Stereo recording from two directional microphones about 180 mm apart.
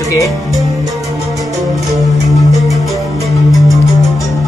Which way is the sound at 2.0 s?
20° right (ahead or behind).